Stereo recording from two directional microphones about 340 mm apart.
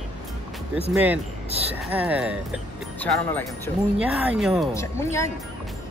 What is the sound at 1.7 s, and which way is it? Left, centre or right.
Speech, centre.